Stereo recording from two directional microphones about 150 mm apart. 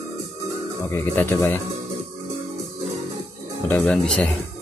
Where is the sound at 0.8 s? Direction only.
15° left (ahead or behind).